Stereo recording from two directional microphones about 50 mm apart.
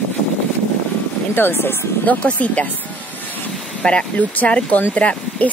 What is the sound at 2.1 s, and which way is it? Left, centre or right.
Speech, left.